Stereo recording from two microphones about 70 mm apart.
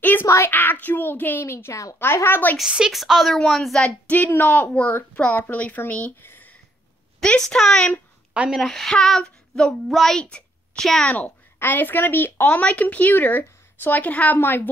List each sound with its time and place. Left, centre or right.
0.0 s a sound: left
0.5 s a woman's voice: left
1.4 s speech: left
2.9 s child singing: centre
3.8 s a woman's voice: left
6.2 s a sound: left
7.2 s a woman's voice: centre
8.3 s a woman's voice: centre
8.5 s child singing: centre
10.2 s a sound: centre
11.1 s a woman's voice: centre